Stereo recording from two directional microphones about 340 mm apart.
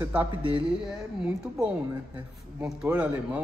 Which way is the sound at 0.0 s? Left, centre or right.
Centre.